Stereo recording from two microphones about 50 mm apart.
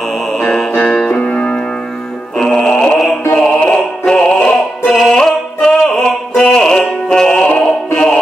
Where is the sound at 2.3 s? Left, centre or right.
Centre.